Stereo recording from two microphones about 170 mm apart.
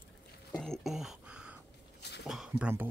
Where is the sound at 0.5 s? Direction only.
Centre (ahead or behind).